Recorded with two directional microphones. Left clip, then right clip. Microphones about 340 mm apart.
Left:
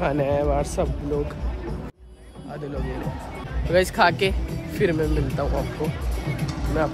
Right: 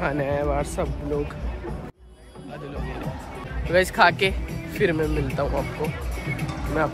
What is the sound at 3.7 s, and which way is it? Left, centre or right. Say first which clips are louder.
Speech: right 1 dB; centre.